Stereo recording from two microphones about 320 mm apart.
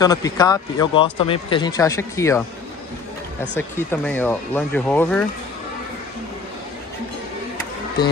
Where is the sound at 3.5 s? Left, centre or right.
Centre.